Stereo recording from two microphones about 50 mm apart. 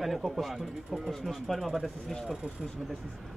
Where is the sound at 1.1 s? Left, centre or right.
Centre.